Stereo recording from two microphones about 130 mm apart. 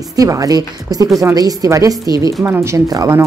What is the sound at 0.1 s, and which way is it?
Speech, 25° right (ahead or behind).